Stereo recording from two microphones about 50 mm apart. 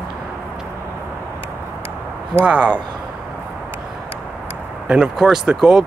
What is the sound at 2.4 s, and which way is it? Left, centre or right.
Speech, right.